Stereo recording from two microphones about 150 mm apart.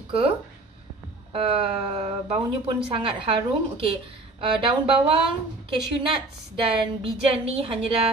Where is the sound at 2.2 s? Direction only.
40° right (ahead or behind).